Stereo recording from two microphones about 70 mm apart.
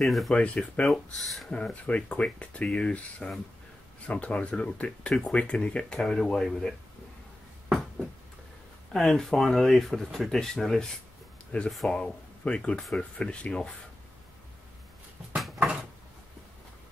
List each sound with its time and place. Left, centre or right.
0.0 s speech: centre
0.3 s speech: centre
0.8 s speech: centre
1.5 s speech: centre
8.9 s speech: centre
11.5 s speech: centre